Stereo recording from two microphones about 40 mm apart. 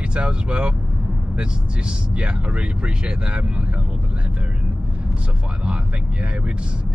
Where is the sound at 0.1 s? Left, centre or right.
Right.